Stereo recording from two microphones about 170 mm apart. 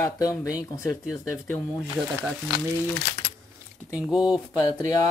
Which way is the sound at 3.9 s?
5° right (ahead or behind).